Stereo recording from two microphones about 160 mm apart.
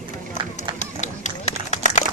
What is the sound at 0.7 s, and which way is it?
Run, 45° left (ahead or behind).